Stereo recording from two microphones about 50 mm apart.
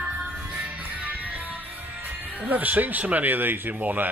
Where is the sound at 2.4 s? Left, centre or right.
Right.